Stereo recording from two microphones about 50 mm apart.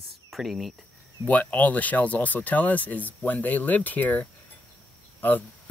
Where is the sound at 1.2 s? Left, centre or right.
Left.